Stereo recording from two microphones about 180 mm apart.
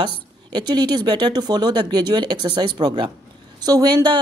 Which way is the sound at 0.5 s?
25° right (ahead or behind).